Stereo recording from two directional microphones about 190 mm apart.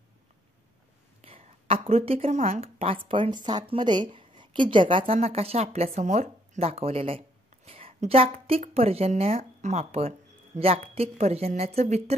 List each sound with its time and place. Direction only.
1.2 s speech: 30° right (ahead or behind)